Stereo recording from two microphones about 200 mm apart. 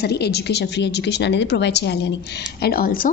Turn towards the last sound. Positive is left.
turn(degrees=45)  # may be behind; listen again after turning